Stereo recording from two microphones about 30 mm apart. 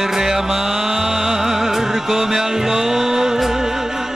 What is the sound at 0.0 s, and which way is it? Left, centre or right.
Music, centre.